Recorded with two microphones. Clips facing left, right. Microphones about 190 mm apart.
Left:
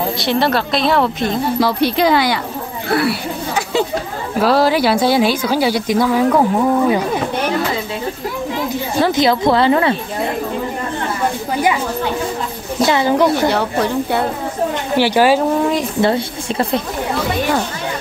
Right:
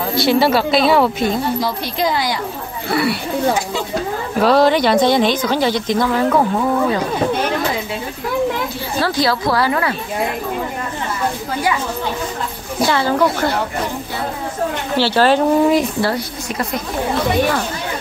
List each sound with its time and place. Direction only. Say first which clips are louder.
0.1 s speech: right 6 dB; centre (ahead or behind)
1.6 s speech: left 5 dB; 70° left (ahead or behind)
2.9 s speech: left 1 dB; centre (ahead or behind)
4.4 s speech: right 1 dB; 5° left (ahead or behind)
9.0 s speech: left 4 dB; 20° left (ahead or behind)
12.8 s speech: left 2 dB; 20° left (ahead or behind)
15.0 s speech: left 1 dB; 15° left (ahead or behind)
16.0 s speech: left 4 dB; 25° left (ahead or behind)